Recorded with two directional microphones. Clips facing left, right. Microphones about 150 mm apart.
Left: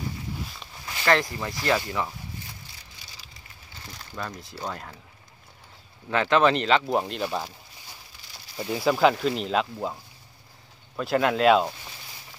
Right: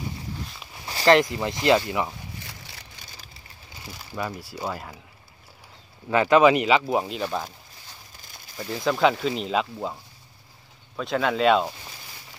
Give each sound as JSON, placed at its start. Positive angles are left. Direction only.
{"t": 0.8, "sound": "a sound", "side_deg": -30}
{"t": 1.1, "sound": "speech", "side_deg": -20}
{"t": 3.8, "sound": "speech", "side_deg": -10}
{"t": 6.0, "sound": "speech", "side_deg": -5}
{"t": 8.5, "sound": "speech", "side_deg": 10}
{"t": 11.0, "sound": "speech", "side_deg": 5}